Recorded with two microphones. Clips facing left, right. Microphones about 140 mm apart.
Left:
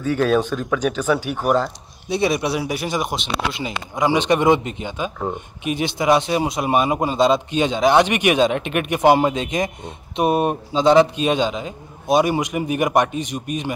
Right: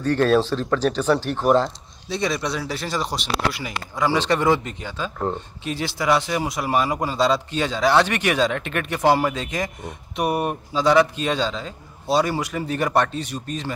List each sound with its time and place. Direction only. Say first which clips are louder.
0.0 s speech: even; 5° left (ahead or behind)
2.0 s speech: left 5 dB; 15° left (ahead or behind)